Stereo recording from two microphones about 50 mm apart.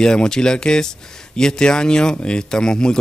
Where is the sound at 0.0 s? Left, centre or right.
Centre.